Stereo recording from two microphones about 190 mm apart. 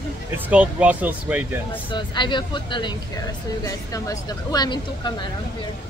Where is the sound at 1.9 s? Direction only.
25° left (ahead or behind).